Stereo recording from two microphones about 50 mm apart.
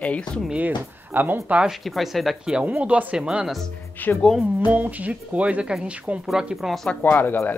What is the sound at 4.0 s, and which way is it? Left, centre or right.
Speech, left.